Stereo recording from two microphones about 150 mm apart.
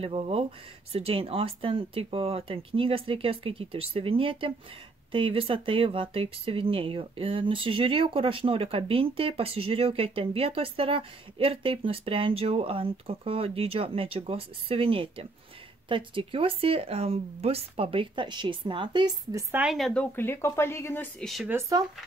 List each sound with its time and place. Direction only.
0.0 s speech: 40° right (ahead or behind)
19.5 s a woman's voice: 5° right (ahead or behind); by 21.3 s 15° left (ahead or behind)
21.5 s speech: 20° right (ahead or behind)